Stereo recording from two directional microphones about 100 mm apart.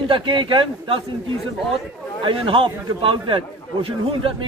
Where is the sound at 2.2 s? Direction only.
60° right (ahead or behind).